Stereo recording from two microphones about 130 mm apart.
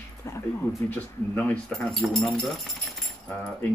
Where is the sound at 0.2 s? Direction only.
20° left (ahead or behind).